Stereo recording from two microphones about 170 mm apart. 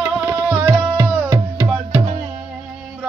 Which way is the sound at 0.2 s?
15° right (ahead or behind).